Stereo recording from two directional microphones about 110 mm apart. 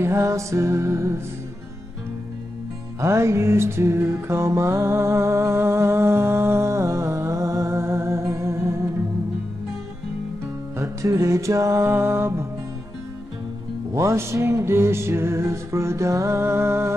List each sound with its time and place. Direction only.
0.0 s music: 25° right (ahead or behind)
3.0 s music: 25° right (ahead or behind)
10.8 s music: 30° right (ahead or behind)
13.9 s music: 25° right (ahead or behind)